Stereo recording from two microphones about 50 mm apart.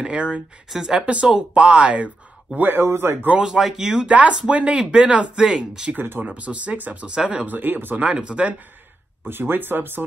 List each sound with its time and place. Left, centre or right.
0.0 s speech: right
2.5 s speech: right
2.8 s speech: right
3.3 s speech: centre
4.1 s speech: right
5.9 s speech: right
6.2 s speech: right
7.5 s speech: right
8.1 s speech: right
9.3 s speech: right